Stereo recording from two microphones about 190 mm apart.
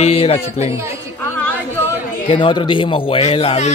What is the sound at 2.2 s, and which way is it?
Speech, 25° left (ahead or behind).